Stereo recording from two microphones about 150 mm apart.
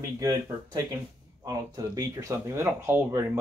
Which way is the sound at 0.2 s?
25° right (ahead or behind).